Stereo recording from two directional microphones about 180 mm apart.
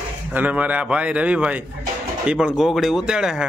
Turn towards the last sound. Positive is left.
turn(degrees=-5)  # may be behind; listen again after turning